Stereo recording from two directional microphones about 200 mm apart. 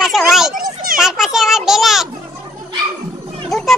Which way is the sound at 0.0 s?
Centre (ahead or behind).